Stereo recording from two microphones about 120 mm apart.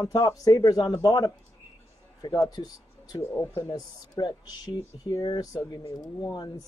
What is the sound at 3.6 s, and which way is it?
A woman's voice, 35° left (ahead or behind).